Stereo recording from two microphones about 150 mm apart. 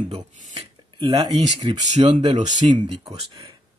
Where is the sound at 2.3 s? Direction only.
55° right (ahead or behind).